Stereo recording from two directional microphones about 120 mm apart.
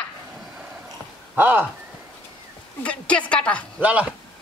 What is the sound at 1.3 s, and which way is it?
Speech, 15° right (ahead or behind).